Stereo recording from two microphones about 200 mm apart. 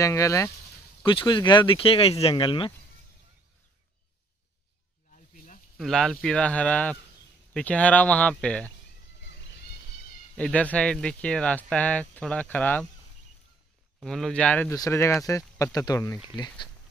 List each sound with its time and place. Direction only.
0.0 s speech: 15° left (ahead or behind)
5.1 s snake: 40° left (ahead or behind)
5.8 s speech: centre (ahead or behind)
10.3 s speech: 5° left (ahead or behind)
14.0 s speech: centre (ahead or behind); by 16.6 s 20° left (ahead or behind)